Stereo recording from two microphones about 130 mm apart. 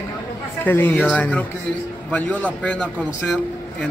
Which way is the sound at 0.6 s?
15° left (ahead or behind).